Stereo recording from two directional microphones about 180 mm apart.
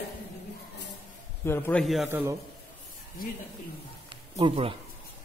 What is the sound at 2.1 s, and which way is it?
Speech, 15° right (ahead or behind).